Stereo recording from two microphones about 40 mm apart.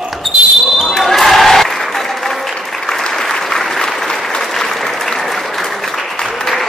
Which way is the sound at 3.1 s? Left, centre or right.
Centre.